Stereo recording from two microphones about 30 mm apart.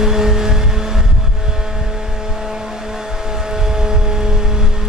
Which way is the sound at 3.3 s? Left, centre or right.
Centre.